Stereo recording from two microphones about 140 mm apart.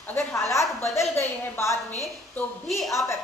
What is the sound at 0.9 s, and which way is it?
A woman's voice, 20° left (ahead or behind).